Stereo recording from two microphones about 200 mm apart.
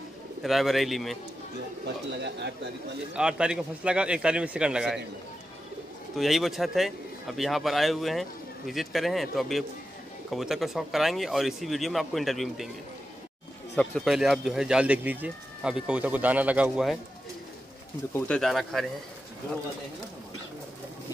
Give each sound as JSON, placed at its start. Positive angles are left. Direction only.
{"t": 0.4, "sound": "speech", "side_deg": 0}
{"t": 2.2, "sound": "speech", "side_deg": -60}
{"t": 3.1, "sound": "speech", "side_deg": -5}
{"t": 6.1, "sound": "speech", "side_deg": 0}
{"t": 13.7, "sound": "speech", "side_deg": 0}
{"t": 18.1, "sound": "speech", "side_deg": 5}